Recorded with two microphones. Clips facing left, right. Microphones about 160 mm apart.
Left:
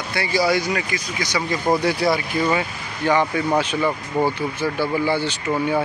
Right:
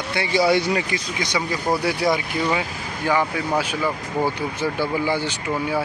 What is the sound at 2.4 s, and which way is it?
Speech, 10° right (ahead or behind).